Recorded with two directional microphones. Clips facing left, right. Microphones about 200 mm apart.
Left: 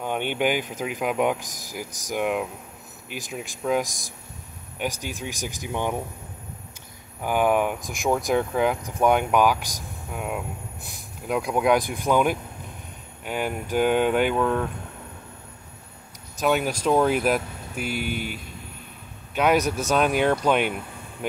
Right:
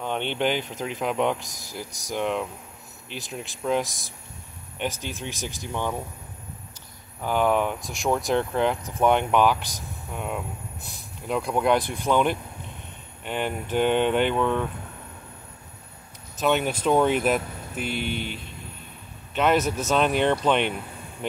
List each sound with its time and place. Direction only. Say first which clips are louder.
0.0 s speech: left 1 dB; 10° left (ahead or behind)
7.2 s speech: left 1 dB; 10° left (ahead or behind)
16.3 s speech: even; 5° left (ahead or behind)